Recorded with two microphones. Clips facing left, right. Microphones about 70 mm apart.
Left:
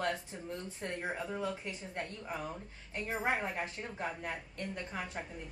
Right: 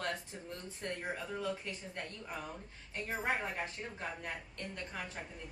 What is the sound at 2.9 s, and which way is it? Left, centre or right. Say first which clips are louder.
A woman's voice: left 2 dB; centre.